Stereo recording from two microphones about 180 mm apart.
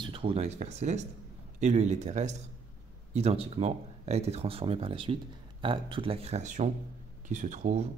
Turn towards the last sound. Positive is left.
turn(degrees=-40)  # may be behind; listen again after turning